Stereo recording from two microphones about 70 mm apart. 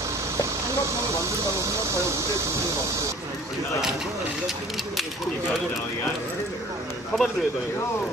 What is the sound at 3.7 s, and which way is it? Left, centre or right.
Speech, centre.